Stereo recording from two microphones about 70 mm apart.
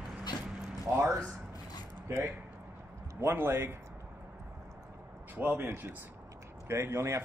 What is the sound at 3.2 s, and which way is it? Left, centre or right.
Speech, right.